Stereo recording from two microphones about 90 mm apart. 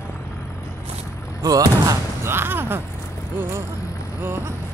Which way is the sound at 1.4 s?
40° right (ahead or behind).